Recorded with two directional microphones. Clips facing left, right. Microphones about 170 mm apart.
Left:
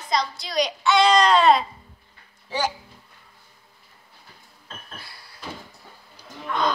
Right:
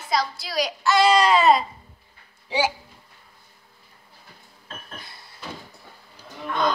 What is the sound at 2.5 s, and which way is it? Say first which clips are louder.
Speech: right 3 dB; 15° right (ahead or behind).